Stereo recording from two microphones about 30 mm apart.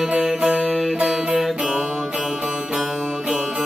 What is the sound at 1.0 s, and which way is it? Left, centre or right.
Music, right.